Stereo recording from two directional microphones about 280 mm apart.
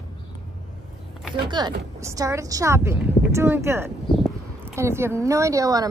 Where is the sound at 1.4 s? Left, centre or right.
Centre.